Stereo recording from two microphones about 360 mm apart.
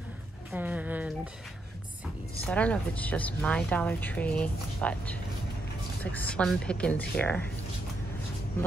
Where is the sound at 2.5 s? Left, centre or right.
Centre.